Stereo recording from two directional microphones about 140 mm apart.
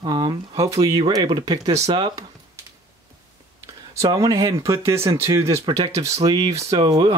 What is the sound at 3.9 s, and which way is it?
Speech, 25° right (ahead or behind).